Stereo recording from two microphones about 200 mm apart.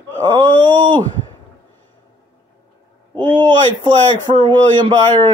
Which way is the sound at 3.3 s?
20° right (ahead or behind).